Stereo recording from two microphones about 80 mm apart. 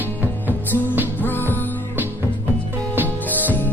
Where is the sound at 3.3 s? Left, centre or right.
Left.